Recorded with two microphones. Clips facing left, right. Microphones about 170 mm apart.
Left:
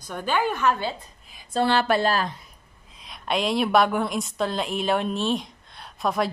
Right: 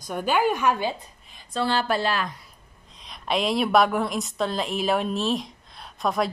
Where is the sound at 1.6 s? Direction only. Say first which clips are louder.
Left 3 dB; 65° left (ahead or behind).